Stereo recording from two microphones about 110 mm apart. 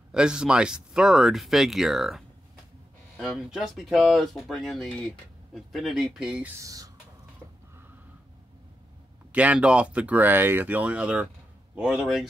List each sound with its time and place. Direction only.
0.1 s speech: 5° right (ahead or behind)
6.6 s speech: 30° right (ahead or behind)
9.3 s speech: 10° right (ahead or behind)